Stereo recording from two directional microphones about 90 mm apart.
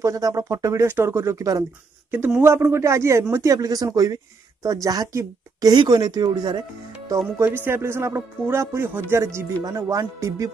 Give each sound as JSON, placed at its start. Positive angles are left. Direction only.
{"t": 0.0, "sound": "speech", "side_deg": -40}
{"t": 0.8, "sound": "speech", "side_deg": -25}
{"t": 2.0, "sound": "speech", "side_deg": -20}
{"t": 7.1, "sound": "speech", "side_deg": -40}
{"t": 7.4, "sound": "speech", "side_deg": -25}
{"t": 9.6, "sound": "speech", "side_deg": -45}